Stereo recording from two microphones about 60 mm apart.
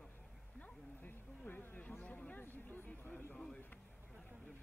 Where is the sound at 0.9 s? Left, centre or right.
Left.